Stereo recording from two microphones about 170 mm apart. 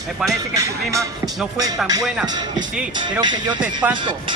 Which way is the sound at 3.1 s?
25° right (ahead or behind).